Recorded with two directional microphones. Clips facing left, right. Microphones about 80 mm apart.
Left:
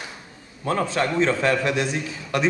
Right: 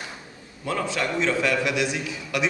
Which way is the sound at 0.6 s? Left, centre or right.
Left.